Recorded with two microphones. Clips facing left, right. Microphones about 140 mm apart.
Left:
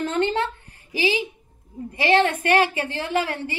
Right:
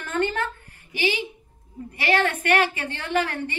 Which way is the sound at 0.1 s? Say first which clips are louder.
Right 1 dB; 20° left (ahead or behind).